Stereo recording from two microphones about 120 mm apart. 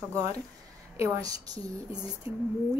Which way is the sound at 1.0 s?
30° right (ahead or behind).